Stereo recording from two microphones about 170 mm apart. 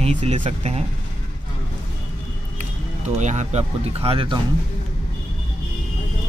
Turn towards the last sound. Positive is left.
turn(degrees=-30)  # may be behind; listen again after turning